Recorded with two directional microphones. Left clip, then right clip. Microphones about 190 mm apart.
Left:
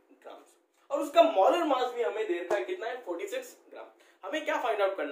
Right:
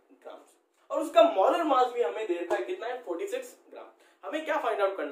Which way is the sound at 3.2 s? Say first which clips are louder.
Right 2 dB; centre (ahead or behind).